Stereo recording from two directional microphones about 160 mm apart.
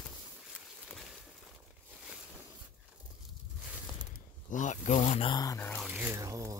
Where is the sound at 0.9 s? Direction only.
Centre (ahead or behind).